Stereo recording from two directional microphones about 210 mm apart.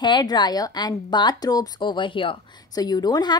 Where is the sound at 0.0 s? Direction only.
20° left (ahead or behind).